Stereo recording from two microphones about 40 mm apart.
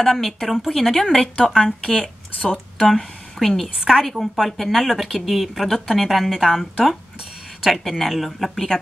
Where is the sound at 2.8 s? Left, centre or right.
Centre.